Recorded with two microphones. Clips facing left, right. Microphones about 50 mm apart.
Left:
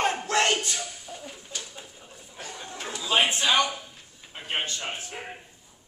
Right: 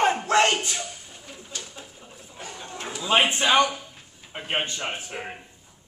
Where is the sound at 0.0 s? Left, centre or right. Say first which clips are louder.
Right 4 dB; centre.